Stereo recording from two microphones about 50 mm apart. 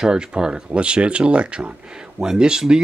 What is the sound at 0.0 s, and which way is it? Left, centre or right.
Speech, centre.